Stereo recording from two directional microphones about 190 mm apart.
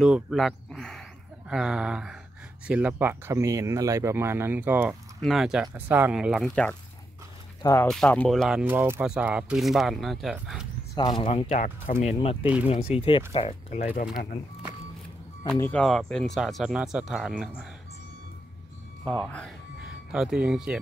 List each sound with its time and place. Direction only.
0.0 s speech: 5° right (ahead or behind)
11.0 s speech: 25° left (ahead or behind)
15.4 s speech: 5° left (ahead or behind)
19.2 s speech: 5° left (ahead or behind)